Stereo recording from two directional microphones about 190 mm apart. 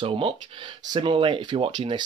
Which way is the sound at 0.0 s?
25° right (ahead or behind).